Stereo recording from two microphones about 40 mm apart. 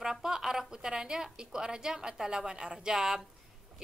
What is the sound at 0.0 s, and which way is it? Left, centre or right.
A woman's voice, centre.